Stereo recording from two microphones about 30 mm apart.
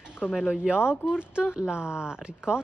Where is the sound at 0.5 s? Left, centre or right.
Right.